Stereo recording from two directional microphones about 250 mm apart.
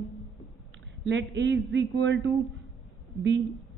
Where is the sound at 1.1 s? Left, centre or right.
Right.